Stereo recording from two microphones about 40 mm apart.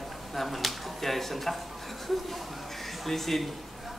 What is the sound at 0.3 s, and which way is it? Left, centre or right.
Speech, centre.